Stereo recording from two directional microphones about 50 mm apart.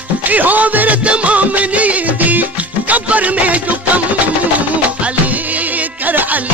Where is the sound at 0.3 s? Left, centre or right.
Right.